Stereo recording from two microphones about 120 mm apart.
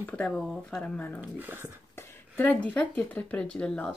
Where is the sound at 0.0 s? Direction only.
10° left (ahead or behind).